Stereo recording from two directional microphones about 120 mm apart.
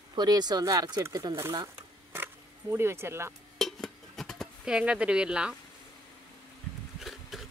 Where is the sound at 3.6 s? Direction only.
Centre (ahead or behind).